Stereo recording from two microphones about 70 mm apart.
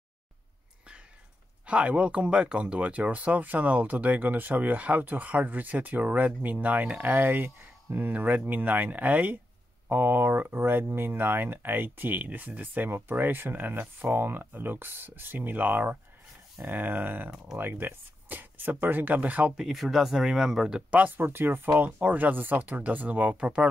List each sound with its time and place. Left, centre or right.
1.7 s speech: centre
19.5 s speech: centre
21.2 s speech: right; by 23.7 s centre